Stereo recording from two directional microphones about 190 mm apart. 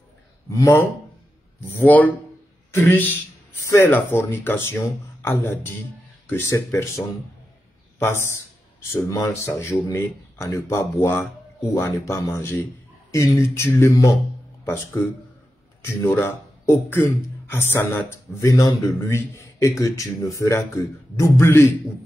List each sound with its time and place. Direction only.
0.5 s a man's voice: 15° left (ahead or behind)
8.0 s a man's voice: 15° left (ahead or behind)
15.8 s a man's voice: 15° left (ahead or behind)